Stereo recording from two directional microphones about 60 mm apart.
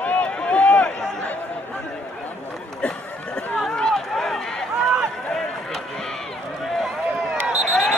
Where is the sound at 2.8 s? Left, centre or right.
Centre.